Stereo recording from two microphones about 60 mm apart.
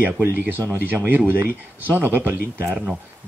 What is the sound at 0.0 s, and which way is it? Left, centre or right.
Speech, right.